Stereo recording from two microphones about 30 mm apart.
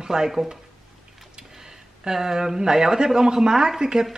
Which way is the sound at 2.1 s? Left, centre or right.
Centre.